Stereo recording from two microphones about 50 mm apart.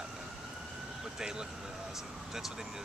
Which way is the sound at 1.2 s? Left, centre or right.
Centre.